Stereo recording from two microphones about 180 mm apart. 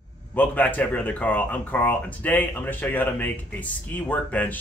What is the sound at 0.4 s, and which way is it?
Speech, 10° left (ahead or behind).